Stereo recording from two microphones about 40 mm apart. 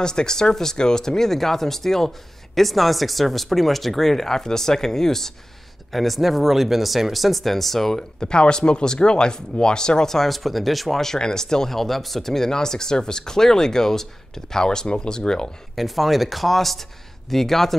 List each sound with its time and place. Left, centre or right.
0.0 s speech: centre
8.2 s speech: left
15.7 s speech: centre